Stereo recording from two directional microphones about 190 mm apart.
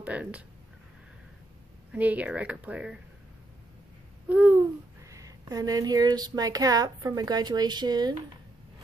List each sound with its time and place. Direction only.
0.0 s speech: 5° right (ahead or behind)
1.9 s speech: 10° right (ahead or behind)
4.3 s speech: 10° right (ahead or behind)